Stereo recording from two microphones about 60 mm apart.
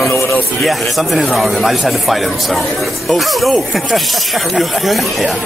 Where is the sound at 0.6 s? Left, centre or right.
Centre.